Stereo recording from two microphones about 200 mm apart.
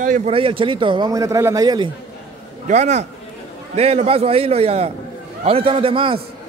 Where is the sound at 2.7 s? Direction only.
35° right (ahead or behind).